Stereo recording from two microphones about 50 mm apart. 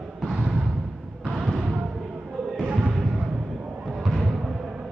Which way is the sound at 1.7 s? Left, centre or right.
Centre.